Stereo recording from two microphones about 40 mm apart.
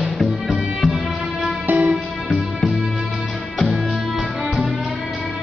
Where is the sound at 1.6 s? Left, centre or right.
Right.